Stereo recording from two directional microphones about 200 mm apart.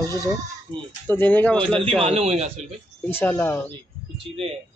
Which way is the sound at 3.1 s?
10° left (ahead or behind).